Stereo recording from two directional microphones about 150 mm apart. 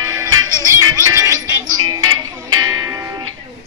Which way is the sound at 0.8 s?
25° right (ahead or behind).